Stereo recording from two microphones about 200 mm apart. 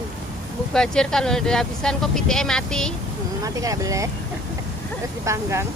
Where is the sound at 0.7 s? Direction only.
5° left (ahead or behind).